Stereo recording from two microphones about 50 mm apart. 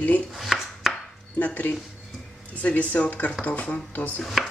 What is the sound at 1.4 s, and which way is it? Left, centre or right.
Speech, left.